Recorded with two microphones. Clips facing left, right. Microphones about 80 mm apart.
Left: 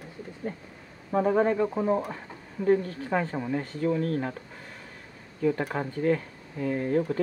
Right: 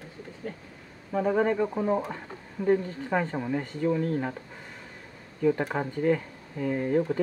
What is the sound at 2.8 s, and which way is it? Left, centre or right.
Speech, centre.